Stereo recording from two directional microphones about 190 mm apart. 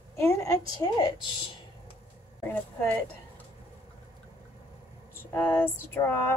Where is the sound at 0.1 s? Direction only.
15° left (ahead or behind).